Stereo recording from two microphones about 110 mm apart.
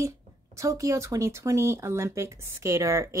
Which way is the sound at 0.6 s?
30° right (ahead or behind).